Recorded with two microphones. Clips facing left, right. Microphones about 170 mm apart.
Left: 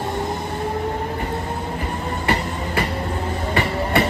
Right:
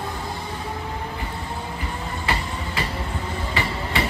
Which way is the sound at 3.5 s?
55° left (ahead or behind).